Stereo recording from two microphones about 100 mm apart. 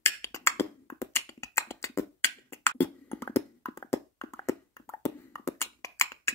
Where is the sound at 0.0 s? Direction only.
25° left (ahead or behind).